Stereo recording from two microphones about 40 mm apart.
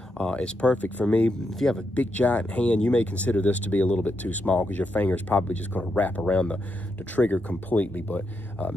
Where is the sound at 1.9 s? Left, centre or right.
Left.